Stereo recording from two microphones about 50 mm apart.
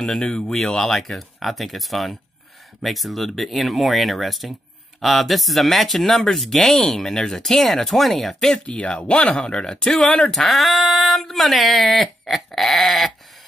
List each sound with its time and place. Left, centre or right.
0.0 s speech: centre
8.6 s speech: left
9.4 s speech: centre
10.3 s speech: centre